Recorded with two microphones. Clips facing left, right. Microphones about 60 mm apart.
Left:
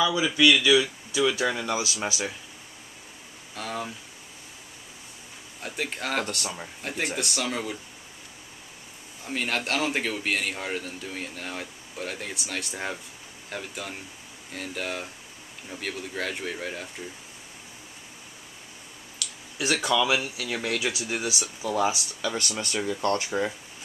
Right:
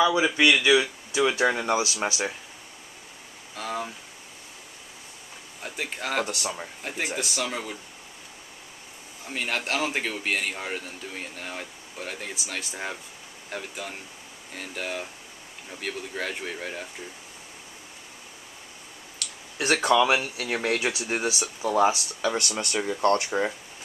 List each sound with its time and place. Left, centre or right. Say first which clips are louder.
0.0 s speech: right 1 dB; right
3.5 s speech: right 1 dB; centre
5.6 s speech: left 1 dB; centre
9.2 s speech: left 1 dB; centre
19.1 s speech: right 1 dB; right